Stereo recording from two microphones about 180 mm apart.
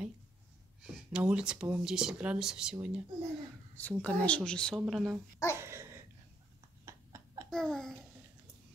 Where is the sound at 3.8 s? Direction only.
10° left (ahead or behind).